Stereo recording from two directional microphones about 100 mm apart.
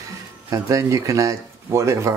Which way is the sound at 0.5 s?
35° right (ahead or behind).